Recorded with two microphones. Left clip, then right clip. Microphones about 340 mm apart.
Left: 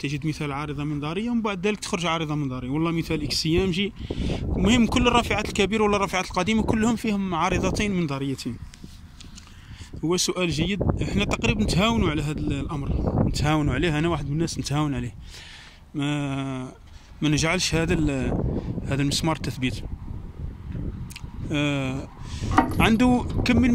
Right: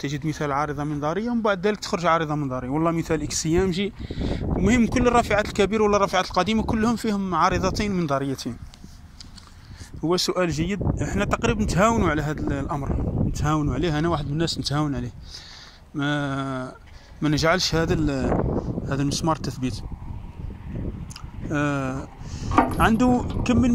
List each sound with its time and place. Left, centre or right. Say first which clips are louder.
0.0 s speech: even; centre
0.4 s a man's voice: right 6 dB; centre
1.3 s speech: right 3 dB; centre
10.0 s speech: right 2 dB; centre
16.0 s speech: right 3 dB; centre
18.3 s speech: right 5 dB; right
18.9 s speech: even; centre
21.5 s speech: right 1 dB; centre